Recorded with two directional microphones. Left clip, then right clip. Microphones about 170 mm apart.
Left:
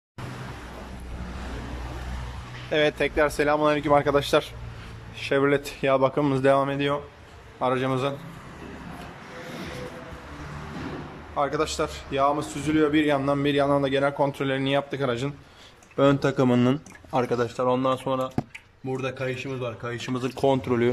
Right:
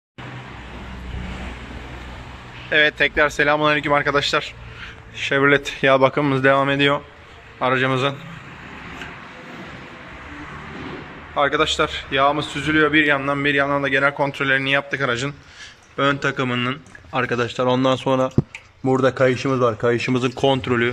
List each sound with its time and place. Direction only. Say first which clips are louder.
2.7 s a man's voice: right 6 dB; 15° left (ahead or behind)
6.7 s speech: right 8 dB; centre (ahead or behind)
7.6 s a man's voice: right 6 dB; 10° left (ahead or behind)
11.3 s a man's voice: right 7 dB; 10° left (ahead or behind); by 16.7 s 30° left (ahead or behind)
17.1 s a man's voice: right 3 dB; 10° left (ahead or behind)
17.6 s speech: right 6 dB; centre (ahead or behind)
18.9 s a man's voice: right 13 dB; 45° right (ahead or behind)
20.2 s speech: right 8 dB; centre (ahead or behind)
20.4 s a man's voice: right 3 dB; 10° left (ahead or behind)